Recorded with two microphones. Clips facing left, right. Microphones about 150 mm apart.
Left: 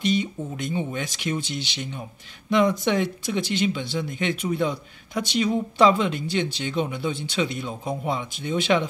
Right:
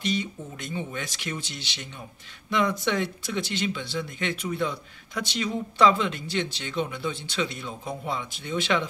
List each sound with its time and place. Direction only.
0.0 s speech: 15° left (ahead or behind)